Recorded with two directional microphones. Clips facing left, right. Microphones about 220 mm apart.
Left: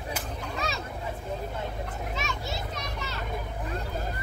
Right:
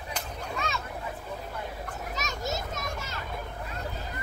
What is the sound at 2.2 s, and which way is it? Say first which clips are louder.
Children playing: right 4 dB; 40° right (ahead or behind).